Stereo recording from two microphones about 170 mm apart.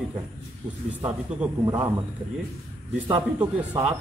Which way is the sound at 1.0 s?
10° right (ahead or behind).